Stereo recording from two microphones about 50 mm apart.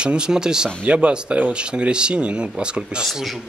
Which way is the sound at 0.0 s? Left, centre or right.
Centre.